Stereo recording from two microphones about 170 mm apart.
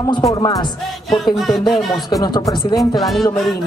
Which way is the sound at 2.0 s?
25° left (ahead or behind).